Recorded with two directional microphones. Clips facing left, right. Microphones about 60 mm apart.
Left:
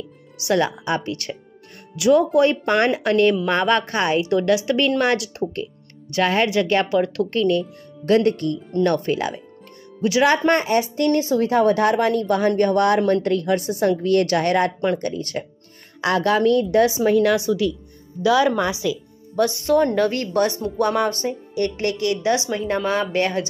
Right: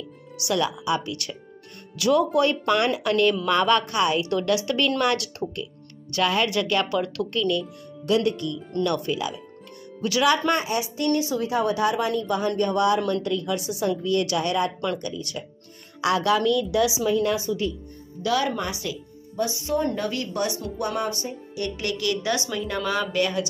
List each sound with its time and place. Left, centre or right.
0.4 s a woman's voice: left
2.0 s a woman's voice: left
4.2 s a woman's voice: left
17.2 s a woman's voice: left
19.3 s a woman's voice: left